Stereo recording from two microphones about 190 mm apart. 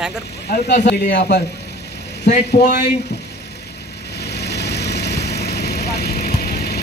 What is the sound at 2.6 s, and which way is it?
Speech, 60° left (ahead or behind).